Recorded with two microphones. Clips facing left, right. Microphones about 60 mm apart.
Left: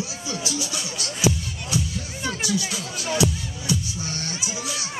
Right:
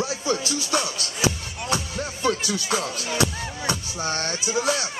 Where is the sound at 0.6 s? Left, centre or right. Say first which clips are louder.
Right 8 dB; right.